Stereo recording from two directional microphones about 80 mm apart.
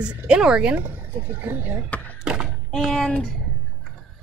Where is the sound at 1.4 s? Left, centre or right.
Right.